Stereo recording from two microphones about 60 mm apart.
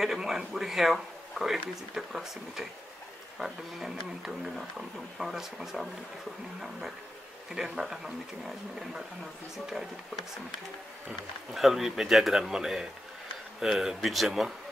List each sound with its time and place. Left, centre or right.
0.0 s speech: centre
7.5 s speech: centre
11.5 s speech: centre